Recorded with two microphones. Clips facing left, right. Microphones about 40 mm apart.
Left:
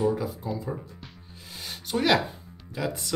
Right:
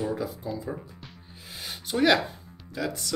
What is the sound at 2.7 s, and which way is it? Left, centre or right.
Speech, centre.